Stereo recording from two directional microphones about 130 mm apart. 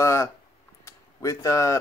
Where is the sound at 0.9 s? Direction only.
25° left (ahead or behind).